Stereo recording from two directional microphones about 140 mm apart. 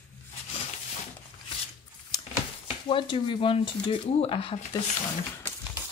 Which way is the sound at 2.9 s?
35° left (ahead or behind).